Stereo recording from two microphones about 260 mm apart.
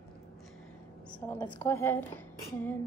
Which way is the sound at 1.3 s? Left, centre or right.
Centre.